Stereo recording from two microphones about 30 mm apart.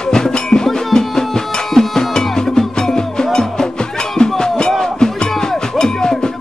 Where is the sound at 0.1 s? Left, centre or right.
Left.